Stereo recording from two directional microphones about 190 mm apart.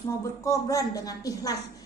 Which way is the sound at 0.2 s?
15° left (ahead or behind).